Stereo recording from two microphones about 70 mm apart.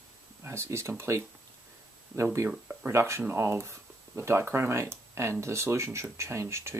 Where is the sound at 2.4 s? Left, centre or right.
Right.